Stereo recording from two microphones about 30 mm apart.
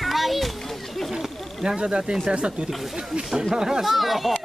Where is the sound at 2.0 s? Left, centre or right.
Right.